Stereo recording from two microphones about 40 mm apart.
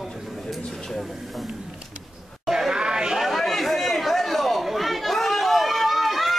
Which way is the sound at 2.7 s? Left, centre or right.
Centre.